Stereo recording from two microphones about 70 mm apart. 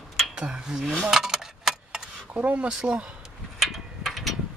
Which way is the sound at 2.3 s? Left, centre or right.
Centre.